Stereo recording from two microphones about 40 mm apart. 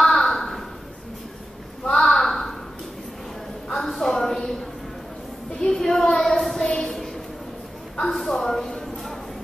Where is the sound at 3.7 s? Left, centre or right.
Centre.